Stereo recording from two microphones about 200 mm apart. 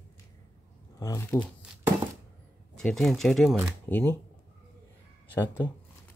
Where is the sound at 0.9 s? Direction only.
15° left (ahead or behind).